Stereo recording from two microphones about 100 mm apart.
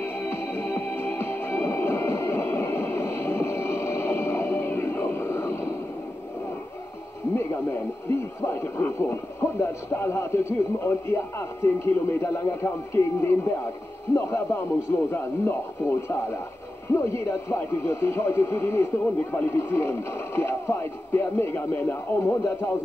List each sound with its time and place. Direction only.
0.0 s music: 25° left (ahead or behind)
8.4 s speech: 25° left (ahead or behind)